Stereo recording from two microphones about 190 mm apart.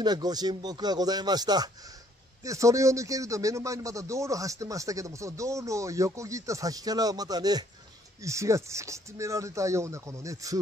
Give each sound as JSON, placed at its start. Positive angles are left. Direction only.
{"t": 0.0, "sound": "a man's voice", "side_deg": -20}